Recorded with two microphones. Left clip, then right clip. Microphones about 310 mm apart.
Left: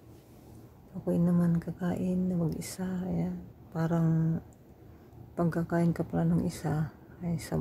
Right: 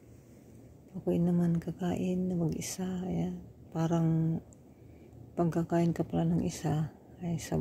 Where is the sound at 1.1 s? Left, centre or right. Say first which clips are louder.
Left 1 dB; centre.